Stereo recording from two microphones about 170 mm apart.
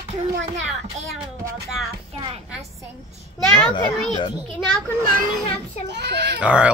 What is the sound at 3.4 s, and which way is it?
Speech, 5° left (ahead or behind).